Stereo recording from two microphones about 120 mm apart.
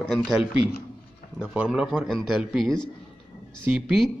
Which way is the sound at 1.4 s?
10° right (ahead or behind).